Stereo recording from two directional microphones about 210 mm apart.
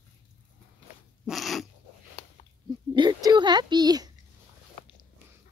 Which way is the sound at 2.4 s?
30° left (ahead or behind).